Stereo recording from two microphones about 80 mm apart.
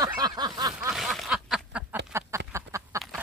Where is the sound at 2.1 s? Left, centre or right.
Right.